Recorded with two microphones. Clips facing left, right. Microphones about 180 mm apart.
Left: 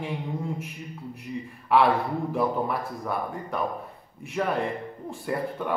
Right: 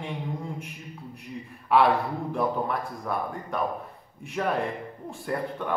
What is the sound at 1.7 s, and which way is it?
A man's voice, centre (ahead or behind).